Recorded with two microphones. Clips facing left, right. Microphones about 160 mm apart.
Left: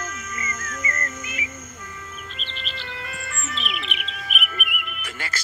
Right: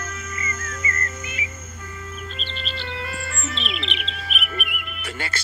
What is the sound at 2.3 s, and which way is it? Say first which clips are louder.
Chirp: right 4 dB; 30° right (ahead or behind).